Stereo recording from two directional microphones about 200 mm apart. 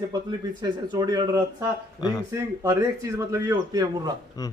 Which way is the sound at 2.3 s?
15° right (ahead or behind).